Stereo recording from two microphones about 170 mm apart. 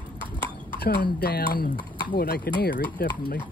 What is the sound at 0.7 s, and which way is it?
Speech, 65° left (ahead or behind).